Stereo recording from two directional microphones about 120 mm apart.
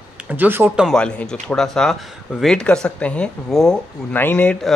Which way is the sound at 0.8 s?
10° left (ahead or behind).